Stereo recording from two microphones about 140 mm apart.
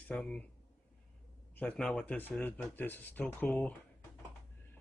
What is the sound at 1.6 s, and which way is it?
Speech, 5° left (ahead or behind).